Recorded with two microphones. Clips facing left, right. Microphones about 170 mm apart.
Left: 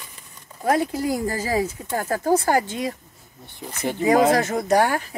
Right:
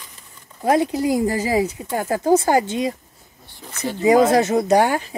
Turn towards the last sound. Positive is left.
turn(degrees=-20)  # may be behind; listen again after turning